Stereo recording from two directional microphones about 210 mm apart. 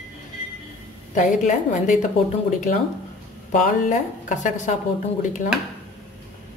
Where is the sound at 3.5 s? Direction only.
40° left (ahead or behind).